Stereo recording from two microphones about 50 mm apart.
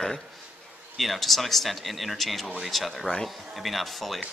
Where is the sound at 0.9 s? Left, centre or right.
Centre.